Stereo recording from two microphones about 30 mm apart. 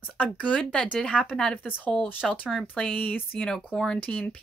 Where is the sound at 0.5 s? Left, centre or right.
Left.